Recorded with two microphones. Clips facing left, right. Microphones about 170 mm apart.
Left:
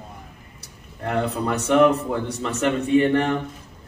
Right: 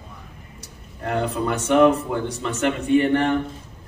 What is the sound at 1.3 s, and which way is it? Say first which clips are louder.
A man's voice: right 1 dB; 35° left (ahead or behind).